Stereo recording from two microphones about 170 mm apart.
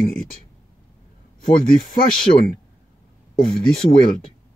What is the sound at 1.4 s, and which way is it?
Speech, 55° left (ahead or behind).